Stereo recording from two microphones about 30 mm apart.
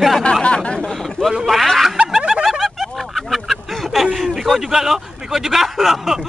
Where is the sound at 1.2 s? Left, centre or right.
Centre.